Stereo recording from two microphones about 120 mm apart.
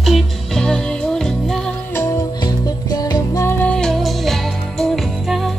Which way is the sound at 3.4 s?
10° left (ahead or behind).